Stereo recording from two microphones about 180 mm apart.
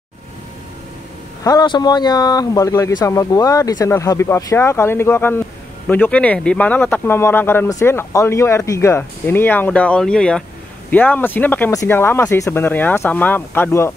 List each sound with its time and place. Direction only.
1.4 s speech: 20° left (ahead or behind)